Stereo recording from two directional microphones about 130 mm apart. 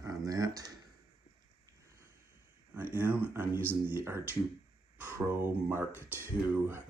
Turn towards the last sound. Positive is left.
turn(degrees=-15)  # may be behind; listen again after turning